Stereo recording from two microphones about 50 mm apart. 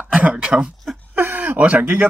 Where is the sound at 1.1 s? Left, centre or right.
Right.